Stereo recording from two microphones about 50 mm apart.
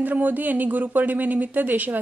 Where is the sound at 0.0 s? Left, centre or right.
Right.